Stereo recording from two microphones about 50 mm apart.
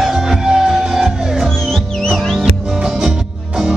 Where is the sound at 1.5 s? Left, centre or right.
Centre.